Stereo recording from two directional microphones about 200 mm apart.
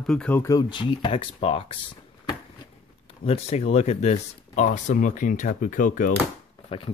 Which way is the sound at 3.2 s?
30° left (ahead or behind).